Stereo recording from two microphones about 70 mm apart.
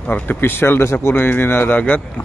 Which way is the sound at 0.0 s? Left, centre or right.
Left.